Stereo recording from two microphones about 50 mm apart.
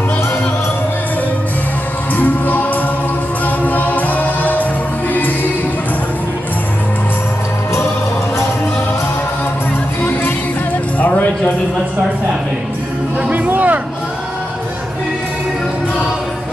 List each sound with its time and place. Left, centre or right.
2.1 s music: left
11.0 s music: left
13.3 s a sound: right